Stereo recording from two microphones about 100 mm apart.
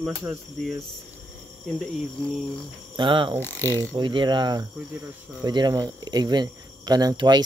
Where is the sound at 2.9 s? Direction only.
55° right (ahead or behind).